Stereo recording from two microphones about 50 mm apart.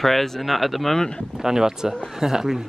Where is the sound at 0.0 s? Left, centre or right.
Centre.